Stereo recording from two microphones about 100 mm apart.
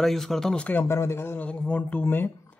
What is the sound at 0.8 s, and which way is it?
Speech, 30° left (ahead or behind).